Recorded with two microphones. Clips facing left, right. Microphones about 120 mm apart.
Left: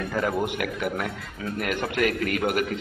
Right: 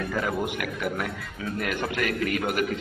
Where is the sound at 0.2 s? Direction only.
Centre (ahead or behind).